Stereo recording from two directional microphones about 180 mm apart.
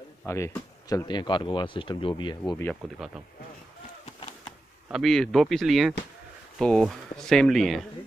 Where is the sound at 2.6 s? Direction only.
5° left (ahead or behind).